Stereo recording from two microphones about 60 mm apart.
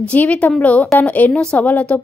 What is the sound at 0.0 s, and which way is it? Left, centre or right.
A woman's voice, left.